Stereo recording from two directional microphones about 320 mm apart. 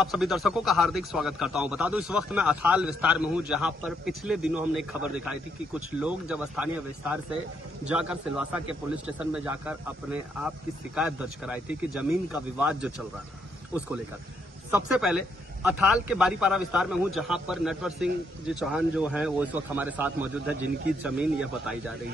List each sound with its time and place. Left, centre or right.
0.0 s a man's voice: centre
14.7 s a man's voice: centre